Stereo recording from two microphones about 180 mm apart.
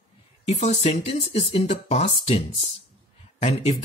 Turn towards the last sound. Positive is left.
turn(degrees=35)  # may be behind; listen again after turning